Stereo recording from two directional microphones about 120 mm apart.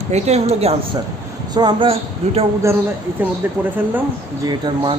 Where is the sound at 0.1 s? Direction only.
65° right (ahead or behind).